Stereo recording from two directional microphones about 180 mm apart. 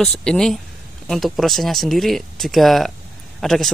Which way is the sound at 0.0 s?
5° left (ahead or behind).